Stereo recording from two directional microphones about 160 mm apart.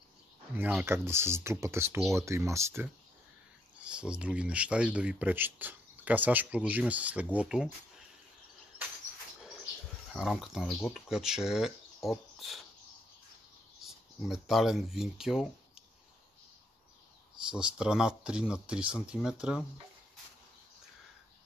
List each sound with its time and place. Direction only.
0.6 s speech: 10° right (ahead or behind)
3.8 s speech: 5° right (ahead or behind)
10.1 s speech: centre (ahead or behind)
14.2 s speech: centre (ahead or behind)
17.5 s speech: 5° right (ahead or behind)